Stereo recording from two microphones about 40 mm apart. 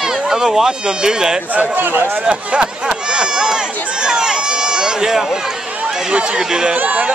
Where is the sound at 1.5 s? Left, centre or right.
Right.